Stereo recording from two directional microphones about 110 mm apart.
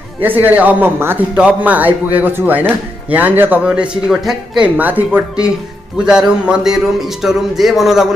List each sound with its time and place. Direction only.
0.2 s a man's voice: 15° right (ahead or behind)
4.7 s a man's voice: 15° right (ahead or behind)